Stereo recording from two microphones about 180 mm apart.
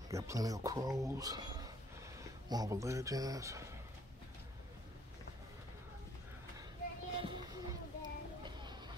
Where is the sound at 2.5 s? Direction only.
20° right (ahead or behind).